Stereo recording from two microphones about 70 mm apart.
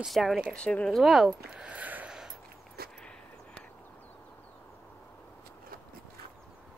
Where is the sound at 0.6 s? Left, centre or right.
Centre.